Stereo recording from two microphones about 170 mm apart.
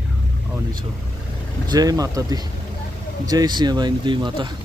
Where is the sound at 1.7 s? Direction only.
20° right (ahead or behind).